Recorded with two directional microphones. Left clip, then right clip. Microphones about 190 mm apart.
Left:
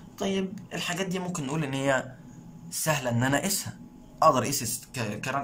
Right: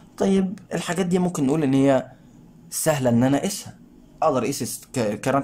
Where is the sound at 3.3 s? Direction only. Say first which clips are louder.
Right 3 dB; 20° right (ahead or behind).